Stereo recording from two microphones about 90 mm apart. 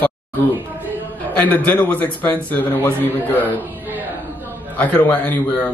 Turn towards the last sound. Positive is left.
turn(degrees=15)  # may be behind; listen again after turning